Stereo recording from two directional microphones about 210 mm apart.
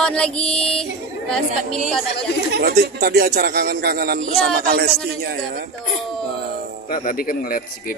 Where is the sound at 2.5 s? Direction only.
50° right (ahead or behind).